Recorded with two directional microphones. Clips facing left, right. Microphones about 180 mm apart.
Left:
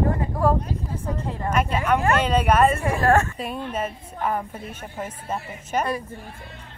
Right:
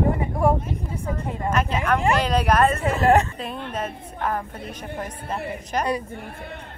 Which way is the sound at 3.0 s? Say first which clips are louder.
Right 2 dB; 20° right (ahead or behind).